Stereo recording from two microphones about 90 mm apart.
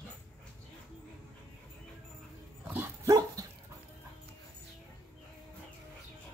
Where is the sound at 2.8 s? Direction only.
40° right (ahead or behind).